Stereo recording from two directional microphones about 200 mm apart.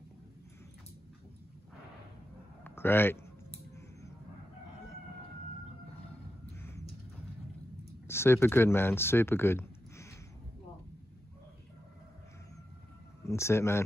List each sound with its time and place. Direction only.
2.6 s a sound: 10° left (ahead or behind)
8.1 s speech: 10° left (ahead or behind)
13.2 s speech: 15° left (ahead or behind)